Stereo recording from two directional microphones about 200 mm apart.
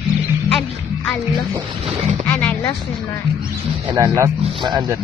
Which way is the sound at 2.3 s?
10° left (ahead or behind).